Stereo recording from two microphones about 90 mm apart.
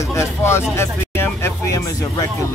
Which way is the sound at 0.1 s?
30° left (ahead or behind).